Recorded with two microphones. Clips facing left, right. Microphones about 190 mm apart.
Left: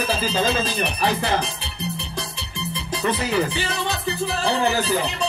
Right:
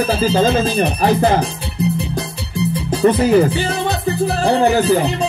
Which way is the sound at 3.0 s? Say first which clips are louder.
Right 10 dB; 45° right (ahead or behind).